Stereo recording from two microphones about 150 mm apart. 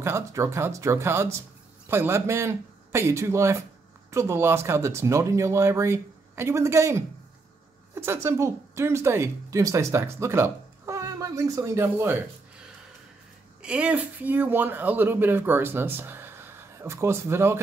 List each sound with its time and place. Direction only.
0.0 s speech: 20° right (ahead or behind)
13.6 s speech: 10° right (ahead or behind)